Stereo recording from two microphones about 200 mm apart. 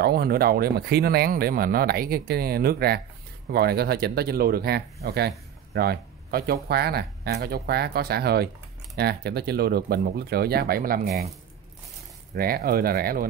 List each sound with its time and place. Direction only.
0.0 s speech: 50° right (ahead or behind)
12.4 s speech: 50° right (ahead or behind)